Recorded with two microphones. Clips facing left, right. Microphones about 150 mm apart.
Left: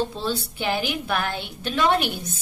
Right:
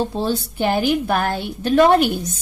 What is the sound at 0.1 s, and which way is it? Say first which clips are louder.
A woman's voice: right 6 dB; 45° right (ahead or behind).